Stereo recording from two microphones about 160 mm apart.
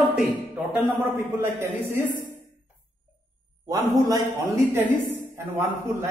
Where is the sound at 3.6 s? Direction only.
20° right (ahead or behind).